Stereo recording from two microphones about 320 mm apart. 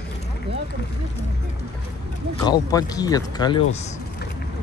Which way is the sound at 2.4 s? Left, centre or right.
Centre.